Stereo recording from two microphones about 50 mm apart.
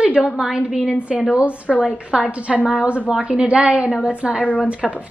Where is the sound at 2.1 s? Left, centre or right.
Centre.